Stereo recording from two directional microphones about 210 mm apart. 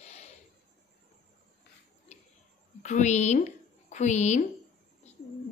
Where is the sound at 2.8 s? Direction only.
35° left (ahead or behind).